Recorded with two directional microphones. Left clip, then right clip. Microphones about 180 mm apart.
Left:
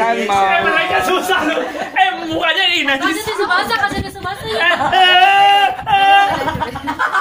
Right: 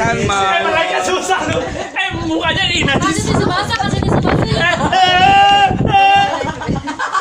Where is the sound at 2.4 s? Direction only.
50° right (ahead or behind).